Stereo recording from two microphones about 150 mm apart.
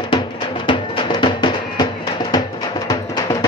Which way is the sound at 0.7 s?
30° left (ahead or behind).